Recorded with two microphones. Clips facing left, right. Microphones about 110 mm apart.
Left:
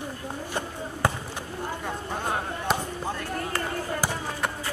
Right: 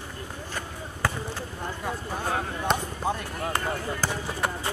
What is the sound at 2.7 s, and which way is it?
Basketball bounce, 5° left (ahead or behind).